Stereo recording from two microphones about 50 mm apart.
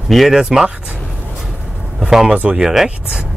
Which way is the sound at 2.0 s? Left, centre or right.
Centre.